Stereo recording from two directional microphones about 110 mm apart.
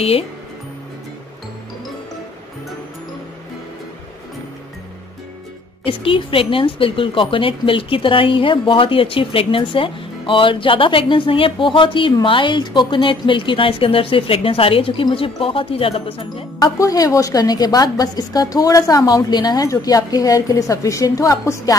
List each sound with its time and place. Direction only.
5.9 s a woman's voice: 55° left (ahead or behind)
16.5 s a woman's voice: 35° left (ahead or behind)